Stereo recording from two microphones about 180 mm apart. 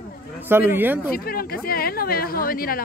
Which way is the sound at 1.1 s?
55° left (ahead or behind).